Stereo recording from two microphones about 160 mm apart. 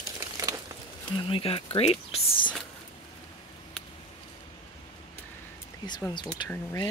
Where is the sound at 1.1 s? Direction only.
35° left (ahead or behind).